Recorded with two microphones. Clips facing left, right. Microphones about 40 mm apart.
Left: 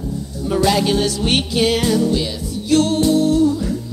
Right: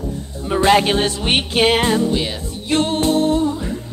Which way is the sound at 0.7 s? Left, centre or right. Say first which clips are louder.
Right 2 dB; right.